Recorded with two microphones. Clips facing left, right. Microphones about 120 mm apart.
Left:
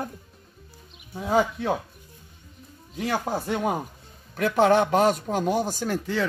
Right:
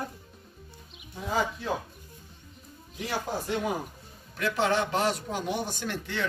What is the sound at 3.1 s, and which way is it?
A man's voice, 50° left (ahead or behind).